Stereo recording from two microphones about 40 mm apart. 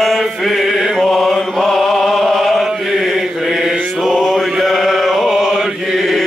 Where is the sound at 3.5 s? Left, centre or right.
Centre.